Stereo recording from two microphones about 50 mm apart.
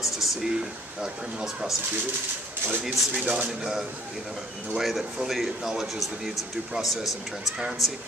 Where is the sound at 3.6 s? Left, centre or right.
Centre.